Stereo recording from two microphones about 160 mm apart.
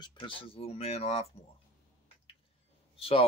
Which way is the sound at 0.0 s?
30° left (ahead or behind).